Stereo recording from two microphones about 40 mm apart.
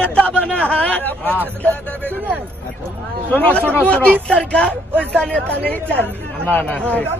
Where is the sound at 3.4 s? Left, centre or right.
Left.